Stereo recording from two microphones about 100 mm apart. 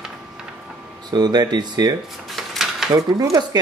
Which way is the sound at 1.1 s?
45° right (ahead or behind).